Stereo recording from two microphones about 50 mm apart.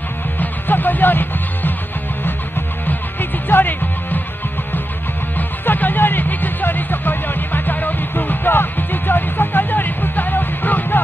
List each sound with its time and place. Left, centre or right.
0.4 s music: left
2.9 s music: left
5.7 s music: left